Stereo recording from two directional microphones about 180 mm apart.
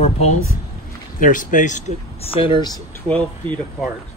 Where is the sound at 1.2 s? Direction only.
45° left (ahead or behind).